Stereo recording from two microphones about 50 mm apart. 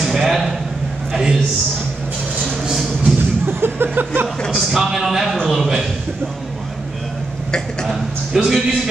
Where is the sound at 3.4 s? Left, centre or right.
Right.